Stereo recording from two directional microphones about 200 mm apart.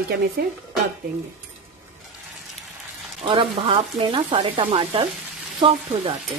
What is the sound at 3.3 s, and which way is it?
Speech, 25° right (ahead or behind).